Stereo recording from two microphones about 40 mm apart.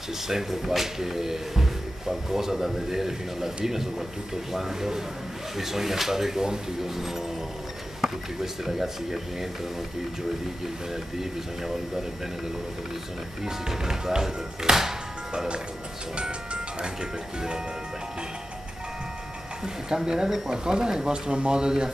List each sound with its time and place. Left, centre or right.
0.3 s speech: centre
13.5 s speech: centre
16.2 s speech: right
19.9 s speech: right
20.2 s speech: centre
20.5 s speech: centre